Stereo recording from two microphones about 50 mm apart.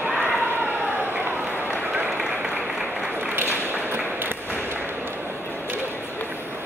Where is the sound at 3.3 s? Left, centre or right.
Right.